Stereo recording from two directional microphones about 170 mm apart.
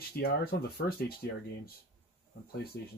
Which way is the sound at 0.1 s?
65° left (ahead or behind).